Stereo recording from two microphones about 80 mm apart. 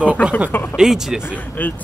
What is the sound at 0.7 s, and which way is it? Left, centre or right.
Speech, centre.